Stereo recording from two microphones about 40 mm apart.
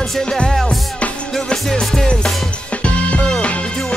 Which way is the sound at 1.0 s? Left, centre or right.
Left.